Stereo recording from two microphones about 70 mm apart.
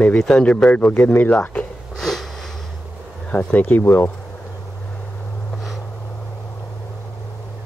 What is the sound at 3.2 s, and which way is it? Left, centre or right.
Speech, left.